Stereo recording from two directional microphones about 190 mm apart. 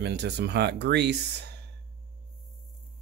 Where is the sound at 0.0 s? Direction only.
60° right (ahead or behind).